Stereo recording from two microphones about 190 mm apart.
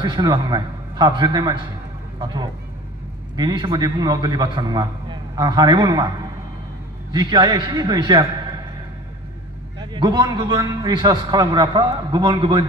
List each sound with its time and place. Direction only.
0.0 s a man's voice: 25° right (ahead or behind)
9.8 s a man's voice: 20° right (ahead or behind)